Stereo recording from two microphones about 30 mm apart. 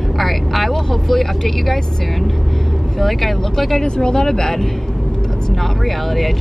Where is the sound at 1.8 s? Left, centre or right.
Left.